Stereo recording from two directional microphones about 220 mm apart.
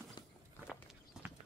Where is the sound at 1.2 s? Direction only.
Centre (ahead or behind).